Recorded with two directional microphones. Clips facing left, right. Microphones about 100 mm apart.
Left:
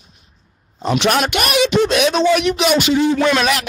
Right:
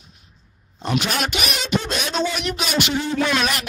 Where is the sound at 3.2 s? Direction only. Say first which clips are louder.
Left 6 dB; 90° left.